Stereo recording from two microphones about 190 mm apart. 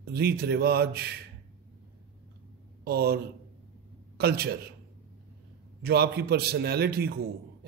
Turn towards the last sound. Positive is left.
turn(degrees=-55)  # may be behind; listen again after turning